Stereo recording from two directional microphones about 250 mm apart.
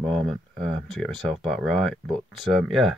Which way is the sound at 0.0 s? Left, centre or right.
Centre.